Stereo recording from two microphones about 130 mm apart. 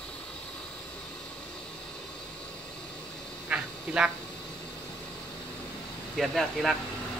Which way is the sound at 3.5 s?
5° right (ahead or behind).